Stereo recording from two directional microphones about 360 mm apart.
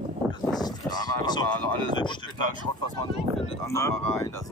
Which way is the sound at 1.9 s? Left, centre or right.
Centre.